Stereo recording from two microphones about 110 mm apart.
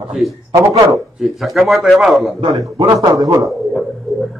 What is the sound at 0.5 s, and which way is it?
Speech, 30° right (ahead or behind).